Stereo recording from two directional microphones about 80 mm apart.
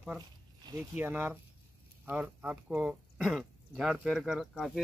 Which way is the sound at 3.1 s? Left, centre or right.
Centre.